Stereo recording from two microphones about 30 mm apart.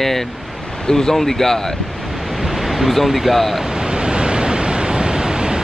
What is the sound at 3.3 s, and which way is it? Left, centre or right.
Speech, centre.